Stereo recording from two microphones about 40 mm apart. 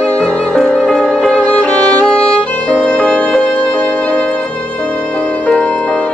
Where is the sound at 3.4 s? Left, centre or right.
Left.